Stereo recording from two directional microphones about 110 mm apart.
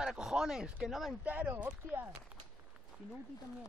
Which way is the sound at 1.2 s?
15° right (ahead or behind).